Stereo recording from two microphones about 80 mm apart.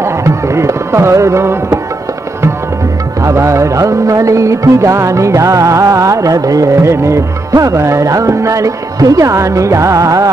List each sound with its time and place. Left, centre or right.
0.0 s music: right
3.2 s music: right